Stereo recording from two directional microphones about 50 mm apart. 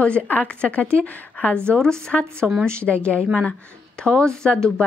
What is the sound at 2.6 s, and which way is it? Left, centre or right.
Speech, right.